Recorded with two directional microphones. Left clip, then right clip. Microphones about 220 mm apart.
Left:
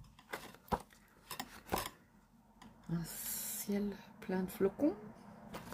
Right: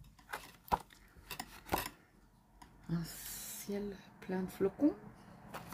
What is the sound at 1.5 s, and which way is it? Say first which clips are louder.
Filing: right 3 dB; 20° right (ahead or behind).